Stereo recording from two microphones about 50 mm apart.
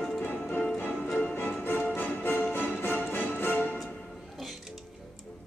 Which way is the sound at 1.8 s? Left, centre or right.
Left.